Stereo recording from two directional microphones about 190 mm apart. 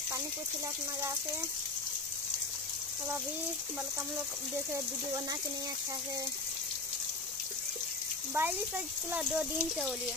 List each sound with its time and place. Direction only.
8.4 s speech: 10° right (ahead or behind)